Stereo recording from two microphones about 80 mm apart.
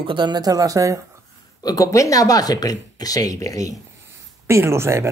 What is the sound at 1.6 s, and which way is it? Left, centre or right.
Speech, left.